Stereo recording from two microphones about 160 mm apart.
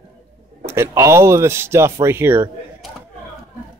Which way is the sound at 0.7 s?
15° right (ahead or behind).